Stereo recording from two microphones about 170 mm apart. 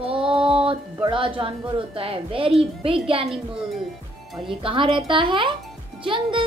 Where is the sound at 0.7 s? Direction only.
30° right (ahead or behind).